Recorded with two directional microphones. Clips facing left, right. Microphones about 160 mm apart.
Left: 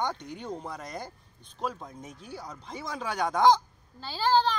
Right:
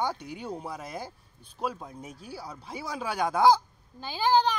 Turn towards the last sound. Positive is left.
turn(degrees=-15)  # may be behind; listen again after turning